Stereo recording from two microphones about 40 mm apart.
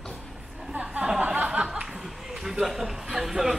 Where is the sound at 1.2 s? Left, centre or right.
Right.